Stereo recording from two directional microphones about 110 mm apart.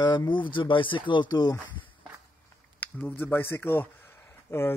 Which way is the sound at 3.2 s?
20° left (ahead or behind).